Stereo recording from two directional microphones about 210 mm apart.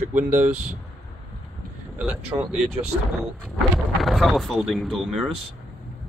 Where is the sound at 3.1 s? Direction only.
Centre (ahead or behind).